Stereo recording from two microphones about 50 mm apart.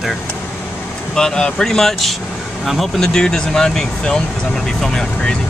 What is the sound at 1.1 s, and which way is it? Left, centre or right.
Speech, centre.